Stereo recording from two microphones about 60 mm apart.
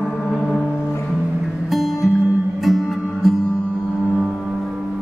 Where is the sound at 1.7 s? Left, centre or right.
Centre.